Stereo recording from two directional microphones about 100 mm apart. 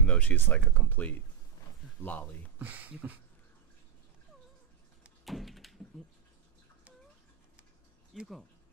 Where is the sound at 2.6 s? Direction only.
15° right (ahead or behind).